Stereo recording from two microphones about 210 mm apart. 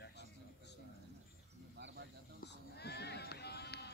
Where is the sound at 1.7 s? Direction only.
55° right (ahead or behind).